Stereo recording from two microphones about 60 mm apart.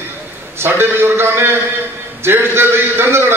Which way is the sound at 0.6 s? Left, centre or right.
Right.